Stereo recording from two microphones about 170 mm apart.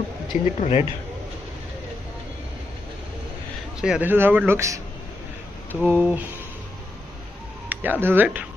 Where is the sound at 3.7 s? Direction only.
5° right (ahead or behind).